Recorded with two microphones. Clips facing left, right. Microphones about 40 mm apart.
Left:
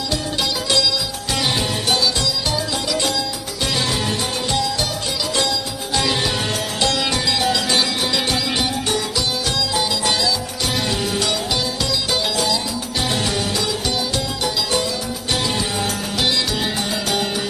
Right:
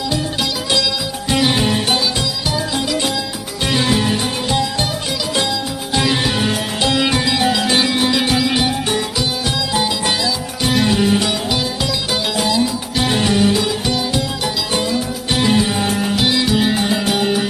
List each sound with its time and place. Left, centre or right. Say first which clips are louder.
1.3 s music: right 6 dB; centre
5.9 s music: right 3 dB; centre
16.2 s music: right 3 dB; centre